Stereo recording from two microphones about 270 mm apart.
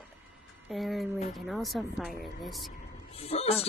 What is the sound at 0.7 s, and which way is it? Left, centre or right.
A woman's voice, centre.